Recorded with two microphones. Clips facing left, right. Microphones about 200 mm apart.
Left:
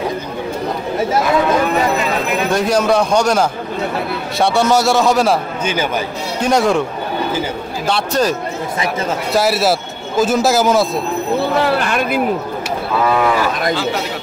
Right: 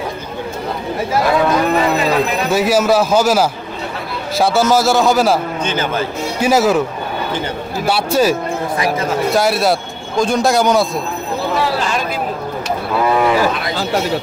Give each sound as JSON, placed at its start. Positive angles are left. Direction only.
{"t": 2.5, "sound": "a man's voice", "side_deg": -5}
{"t": 5.7, "sound": "speech", "side_deg": 10}
{"t": 6.4, "sound": "a man's voice", "side_deg": -5}
{"t": 7.8, "sound": "a man's voice", "side_deg": -5}
{"t": 11.6, "sound": "a sound", "side_deg": 60}